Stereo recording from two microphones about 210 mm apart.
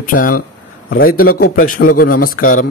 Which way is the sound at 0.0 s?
40° left (ahead or behind).